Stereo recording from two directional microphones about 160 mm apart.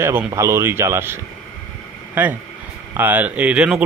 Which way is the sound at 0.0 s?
15° right (ahead or behind).